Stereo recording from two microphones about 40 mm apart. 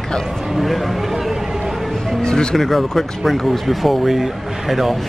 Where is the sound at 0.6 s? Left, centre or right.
Centre.